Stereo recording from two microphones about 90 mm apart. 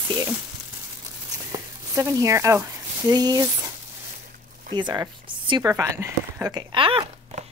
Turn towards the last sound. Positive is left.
turn(degrees=-75)  # may be behind; listen again after turning